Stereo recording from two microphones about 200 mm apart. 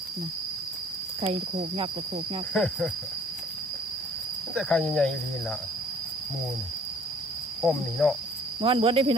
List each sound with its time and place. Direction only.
1.2 s speech: 30° right (ahead or behind)
2.5 s speech: 5° left (ahead or behind)
4.6 s speech: 5° left (ahead or behind)
7.6 s speech: centre (ahead or behind)
8.5 s speech: 25° right (ahead or behind)